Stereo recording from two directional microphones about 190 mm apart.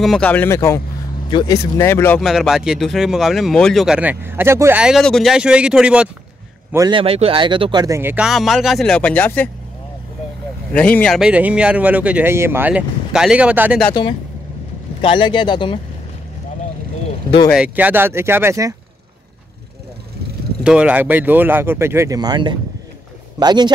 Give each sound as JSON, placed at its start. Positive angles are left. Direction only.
{"t": 0.0, "sound": "speech", "side_deg": 5}
{"t": 1.8, "sound": "speech", "side_deg": 15}
{"t": 6.7, "sound": "speech", "side_deg": -20}
{"t": 10.7, "sound": "speech", "side_deg": 5}
{"t": 14.0, "sound": "speech", "side_deg": 25}
{"t": 17.5, "sound": "speech", "side_deg": -5}
{"t": 20.6, "sound": "a man's voice", "side_deg": -5}